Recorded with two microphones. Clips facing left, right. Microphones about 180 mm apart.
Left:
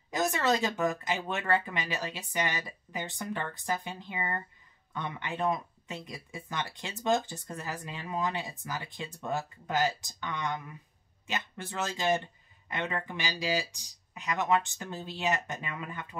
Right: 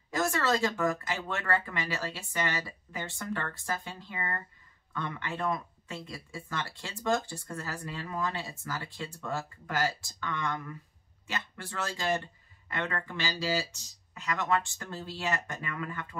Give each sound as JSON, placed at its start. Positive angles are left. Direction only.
{"t": 0.1, "sound": "speech", "side_deg": 20}